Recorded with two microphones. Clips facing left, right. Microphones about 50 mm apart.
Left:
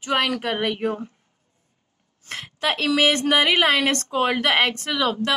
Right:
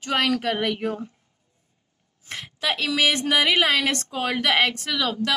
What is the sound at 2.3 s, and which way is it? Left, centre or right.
A woman's voice, left.